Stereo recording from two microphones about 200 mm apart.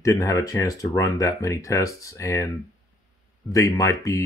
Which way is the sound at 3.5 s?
15° left (ahead or behind).